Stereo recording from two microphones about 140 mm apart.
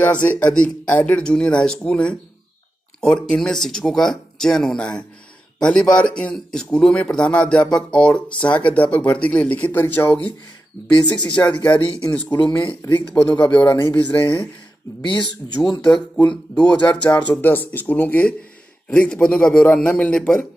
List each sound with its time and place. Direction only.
0.0 s speech: 10° left (ahead or behind)
11.4 s speech: 15° left (ahead or behind)
12.4 s speech: 35° left (ahead or behind)
12.9 s speech: 10° left (ahead or behind)
13.7 s speech: 20° left (ahead or behind)
13.9 s speech: 10° left (ahead or behind)
15.0 s speech: 35° left (ahead or behind)
17.3 s speech: 15° left (ahead or behind)